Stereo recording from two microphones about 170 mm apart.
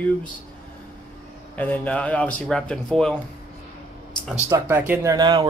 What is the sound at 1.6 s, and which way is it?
Speech, 10° left (ahead or behind).